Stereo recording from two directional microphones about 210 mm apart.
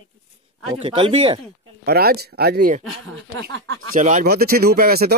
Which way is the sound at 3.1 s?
60° right (ahead or behind).